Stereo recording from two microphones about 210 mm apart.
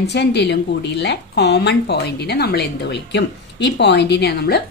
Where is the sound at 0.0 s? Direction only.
55° left (ahead or behind).